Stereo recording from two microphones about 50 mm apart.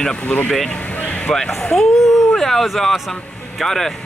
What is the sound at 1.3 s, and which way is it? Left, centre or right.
Speech, centre.